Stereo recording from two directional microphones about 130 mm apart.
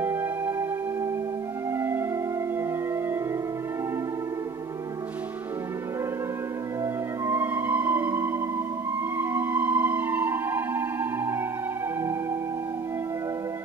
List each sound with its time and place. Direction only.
0.0 s music: 20° right (ahead or behind)
1.8 s music: 15° right (ahead or behind)
7.2 s music: 15° right (ahead or behind)